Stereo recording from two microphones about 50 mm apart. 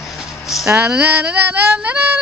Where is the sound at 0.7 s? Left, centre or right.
Right.